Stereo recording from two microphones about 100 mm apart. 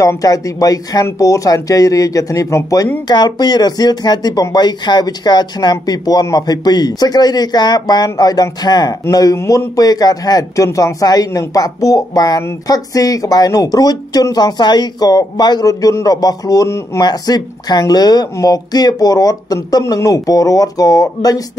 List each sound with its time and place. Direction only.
0.0 s speech: 35° left (ahead or behind)
3.1 s speech: 45° left (ahead or behind); by 17.0 s 25° left (ahead or behind)
17.0 s speech: 40° left (ahead or behind)